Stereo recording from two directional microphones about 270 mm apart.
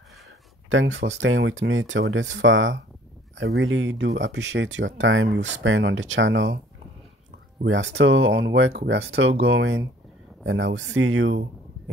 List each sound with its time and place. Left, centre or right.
1.2 s speech: right
7.6 s speech: right